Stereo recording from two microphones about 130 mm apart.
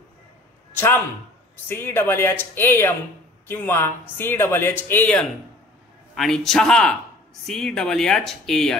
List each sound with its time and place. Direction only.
0.7 s speech: 20° left (ahead or behind)
6.1 s speech: centre (ahead or behind)